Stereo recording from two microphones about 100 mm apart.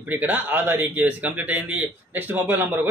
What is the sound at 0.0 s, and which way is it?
Speech, 20° right (ahead or behind).